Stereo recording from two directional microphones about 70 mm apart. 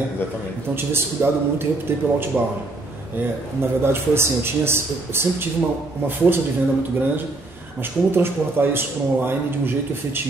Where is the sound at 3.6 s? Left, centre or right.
Right.